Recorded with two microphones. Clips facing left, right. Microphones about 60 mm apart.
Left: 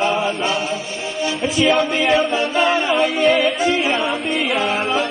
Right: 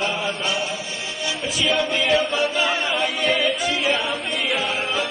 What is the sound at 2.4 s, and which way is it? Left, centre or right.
Music, centre.